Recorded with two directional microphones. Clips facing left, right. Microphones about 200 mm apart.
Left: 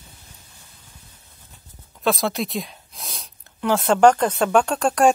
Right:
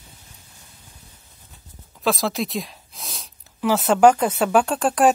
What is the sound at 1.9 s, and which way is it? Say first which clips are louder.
Speech: even; centre (ahead or behind).